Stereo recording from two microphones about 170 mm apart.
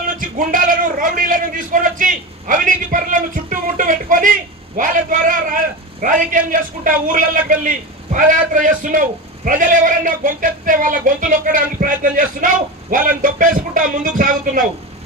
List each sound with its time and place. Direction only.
0.2 s a man's voice: 50° right (ahead or behind)